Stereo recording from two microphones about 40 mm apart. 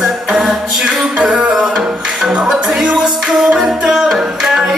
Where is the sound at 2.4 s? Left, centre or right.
Centre.